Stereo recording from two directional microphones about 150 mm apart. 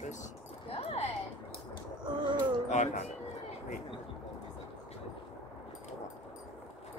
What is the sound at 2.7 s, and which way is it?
Speech, 50° left (ahead or behind).